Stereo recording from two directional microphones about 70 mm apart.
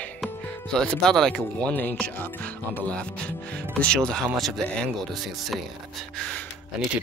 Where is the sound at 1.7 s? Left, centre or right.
Left.